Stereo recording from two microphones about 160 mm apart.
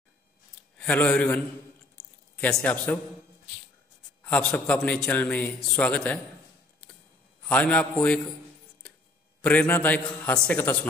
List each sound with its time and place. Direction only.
0.7 s a man's voice: 10° left (ahead or behind)
4.2 s a man's voice: 5° left (ahead or behind)
7.4 s a man's voice: 10° left (ahead or behind)
9.4 s a man's voice: 10° left (ahead or behind)